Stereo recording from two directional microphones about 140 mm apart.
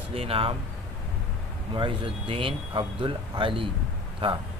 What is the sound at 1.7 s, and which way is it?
Speech, 35° right (ahead or behind).